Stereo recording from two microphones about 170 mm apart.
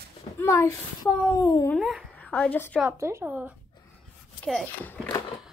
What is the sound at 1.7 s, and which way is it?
A woman's voice, centre (ahead or behind).